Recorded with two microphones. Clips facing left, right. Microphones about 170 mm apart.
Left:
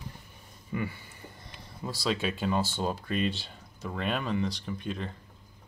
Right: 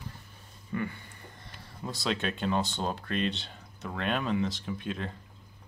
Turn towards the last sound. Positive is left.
turn(degrees=0)  # may be behind; listen again after turning